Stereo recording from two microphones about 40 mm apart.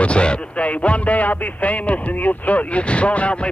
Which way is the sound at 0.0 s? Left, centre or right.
Left.